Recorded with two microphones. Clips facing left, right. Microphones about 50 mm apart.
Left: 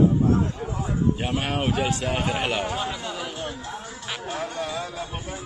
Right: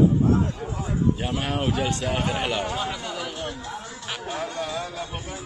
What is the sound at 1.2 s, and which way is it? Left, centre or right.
Speech, left.